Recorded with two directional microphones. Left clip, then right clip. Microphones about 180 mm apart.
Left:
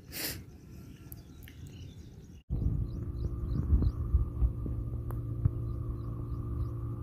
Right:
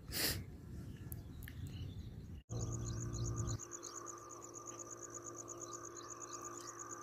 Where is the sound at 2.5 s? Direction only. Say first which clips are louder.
Left 4 dB; 25° right (ahead or behind).